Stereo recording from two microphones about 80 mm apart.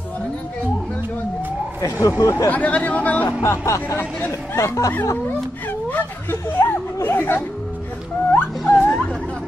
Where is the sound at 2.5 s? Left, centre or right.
Centre.